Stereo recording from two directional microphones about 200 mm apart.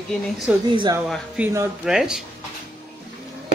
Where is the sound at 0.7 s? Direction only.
25° right (ahead or behind).